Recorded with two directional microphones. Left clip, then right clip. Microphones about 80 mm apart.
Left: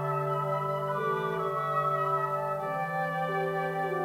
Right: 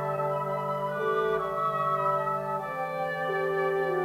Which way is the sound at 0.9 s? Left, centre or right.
Left.